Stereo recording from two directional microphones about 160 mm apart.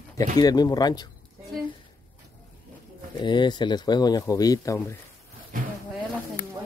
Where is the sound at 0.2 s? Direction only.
25° left (ahead or behind).